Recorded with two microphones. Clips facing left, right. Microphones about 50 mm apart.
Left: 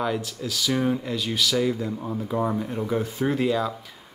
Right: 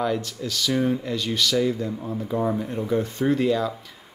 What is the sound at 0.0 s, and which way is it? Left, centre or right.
Speech, centre.